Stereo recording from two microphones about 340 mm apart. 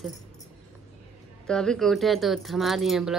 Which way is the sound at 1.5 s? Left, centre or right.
Centre.